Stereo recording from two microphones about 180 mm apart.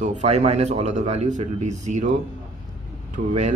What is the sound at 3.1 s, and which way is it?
Speech, 40° right (ahead or behind).